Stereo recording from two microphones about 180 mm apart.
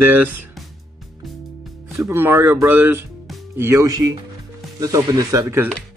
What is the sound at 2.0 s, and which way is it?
Speech, 10° right (ahead or behind).